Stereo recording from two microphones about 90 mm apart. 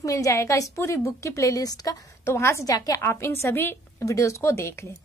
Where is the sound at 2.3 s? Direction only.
30° left (ahead or behind).